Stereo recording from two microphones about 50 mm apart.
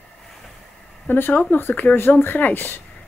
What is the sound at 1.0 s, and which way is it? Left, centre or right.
Speech, left.